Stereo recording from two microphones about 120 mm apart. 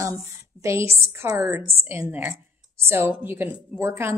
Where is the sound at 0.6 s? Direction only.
25° right (ahead or behind).